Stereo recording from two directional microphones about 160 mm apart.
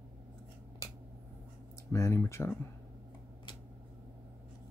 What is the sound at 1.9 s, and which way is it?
Speech, 15° left (ahead or behind).